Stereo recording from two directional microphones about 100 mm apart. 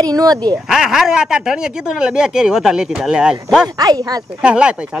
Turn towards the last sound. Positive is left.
turn(degrees=-10)  # may be behind; listen again after turning